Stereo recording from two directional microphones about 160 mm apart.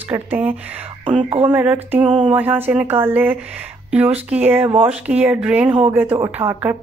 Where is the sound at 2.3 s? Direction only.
10° right (ahead or behind).